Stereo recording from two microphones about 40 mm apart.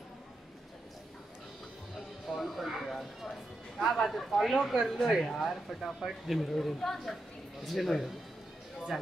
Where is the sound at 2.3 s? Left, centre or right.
Centre.